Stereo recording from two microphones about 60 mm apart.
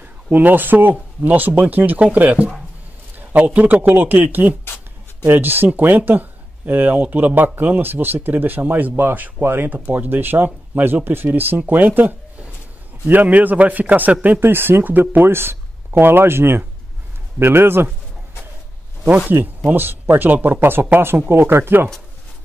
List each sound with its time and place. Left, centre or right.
0.0 s a man's voice: right
19.3 s speech: right